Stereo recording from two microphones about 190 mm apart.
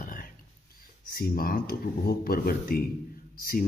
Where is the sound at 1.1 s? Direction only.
50° left (ahead or behind).